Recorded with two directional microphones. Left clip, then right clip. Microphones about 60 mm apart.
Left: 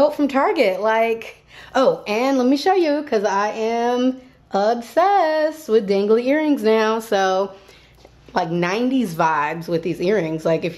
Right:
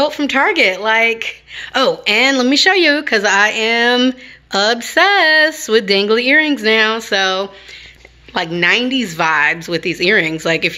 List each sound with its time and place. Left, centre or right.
0.0 s a woman's voice: left
2.0 s a woman's voice: centre
5.0 s a woman's voice: centre
5.7 s a woman's voice: centre
6.1 s a woman's voice: centre
6.4 s a woman's voice: left
8.5 s a woman's voice: left
9.2 s a woman's voice: left